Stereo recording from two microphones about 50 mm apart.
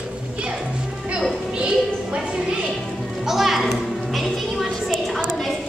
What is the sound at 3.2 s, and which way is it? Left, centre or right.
Music, centre.